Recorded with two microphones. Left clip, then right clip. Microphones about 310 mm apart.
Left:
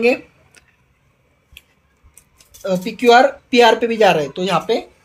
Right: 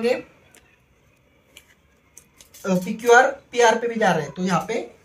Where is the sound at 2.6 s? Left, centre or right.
Left.